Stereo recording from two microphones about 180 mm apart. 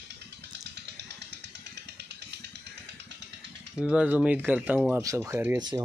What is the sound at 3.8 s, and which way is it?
Speech, 5° right (ahead or behind).